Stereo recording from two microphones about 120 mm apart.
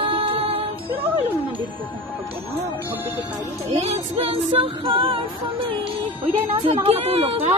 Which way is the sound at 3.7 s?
55° right (ahead or behind).